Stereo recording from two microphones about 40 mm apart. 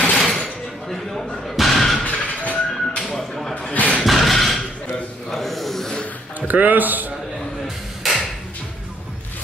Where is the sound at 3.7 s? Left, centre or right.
Left.